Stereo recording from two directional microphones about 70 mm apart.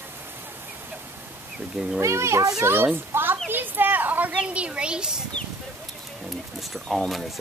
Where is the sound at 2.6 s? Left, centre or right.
Right.